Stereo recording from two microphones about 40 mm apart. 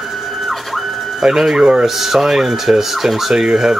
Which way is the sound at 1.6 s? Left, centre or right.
Right.